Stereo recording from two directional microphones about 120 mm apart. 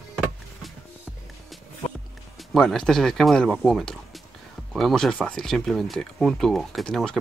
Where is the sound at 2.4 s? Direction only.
Centre (ahead or behind).